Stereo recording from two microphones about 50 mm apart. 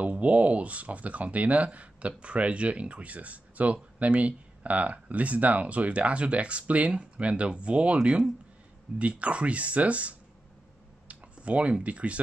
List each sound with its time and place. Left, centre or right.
0.0 s speech: right